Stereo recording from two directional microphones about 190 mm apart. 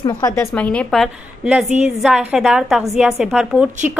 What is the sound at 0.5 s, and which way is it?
A woman's voice, 5° left (ahead or behind).